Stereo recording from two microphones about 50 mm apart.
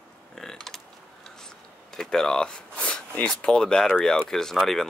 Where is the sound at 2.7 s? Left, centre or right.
Left.